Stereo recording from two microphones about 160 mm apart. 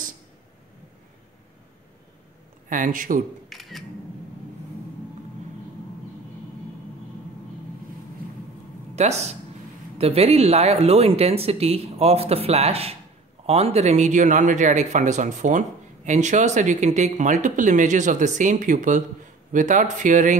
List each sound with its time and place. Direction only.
2.7 s speech: 55° right (ahead or behind)
3.4 s camera: centre (ahead or behind)
8.9 s speech: 45° right (ahead or behind)